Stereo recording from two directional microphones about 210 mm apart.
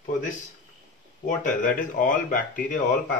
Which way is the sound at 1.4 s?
40° left (ahead or behind).